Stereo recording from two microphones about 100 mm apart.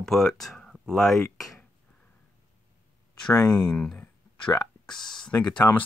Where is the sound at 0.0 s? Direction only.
5° left (ahead or behind).